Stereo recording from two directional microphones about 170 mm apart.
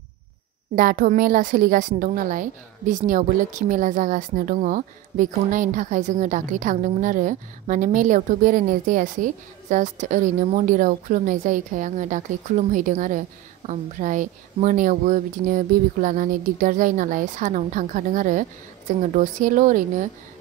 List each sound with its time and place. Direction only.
0.7 s a woman's voice: 55° right (ahead or behind)